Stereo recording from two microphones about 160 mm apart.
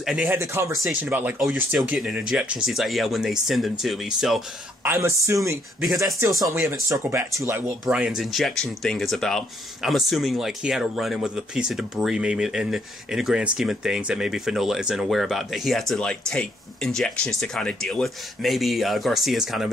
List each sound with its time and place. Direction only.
0.0 s speech: centre (ahead or behind)
0.3 s speech: 15° right (ahead or behind)
4.8 s speech: 15° right (ahead or behind)